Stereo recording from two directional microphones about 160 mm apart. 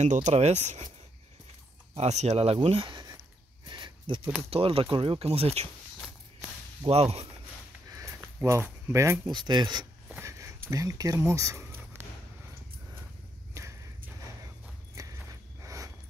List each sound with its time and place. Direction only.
0.0 s speech: 50° right (ahead or behind)
2.0 s speech: 45° right (ahead or behind); by 3.2 s 30° right (ahead or behind)
3.6 s a sound: 30° right (ahead or behind)
4.5 s speech: 35° right (ahead or behind)
6.9 s speech: 40° right (ahead or behind)
7.9 s a sound: 20° right (ahead or behind)
9.3 s speech: 30° right (ahead or behind)
13.6 s walk: 20° right (ahead or behind)
15.0 s a sound: 20° right (ahead or behind)